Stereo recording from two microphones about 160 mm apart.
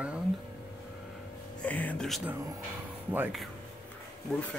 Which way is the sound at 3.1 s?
10° right (ahead or behind).